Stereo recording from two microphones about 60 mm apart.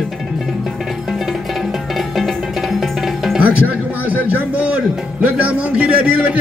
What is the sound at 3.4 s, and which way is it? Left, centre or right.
Speech, right.